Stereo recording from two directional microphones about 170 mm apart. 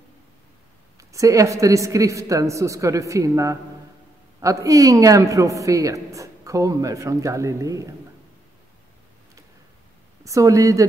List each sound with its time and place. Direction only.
0.9 s a man's voice: 20° right (ahead or behind)
10.2 s a man's voice: 20° right (ahead or behind)